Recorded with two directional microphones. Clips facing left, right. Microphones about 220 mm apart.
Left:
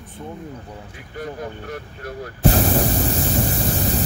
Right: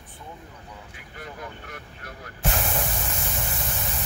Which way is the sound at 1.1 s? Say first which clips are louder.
Left 9 dB; 35° left (ahead or behind).